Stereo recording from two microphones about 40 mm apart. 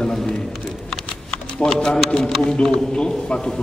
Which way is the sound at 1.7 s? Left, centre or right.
Centre.